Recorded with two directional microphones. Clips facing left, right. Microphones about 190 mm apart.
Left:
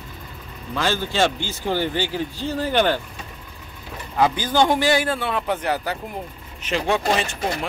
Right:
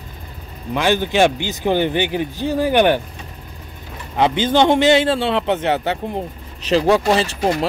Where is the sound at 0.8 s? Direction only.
15° right (ahead or behind).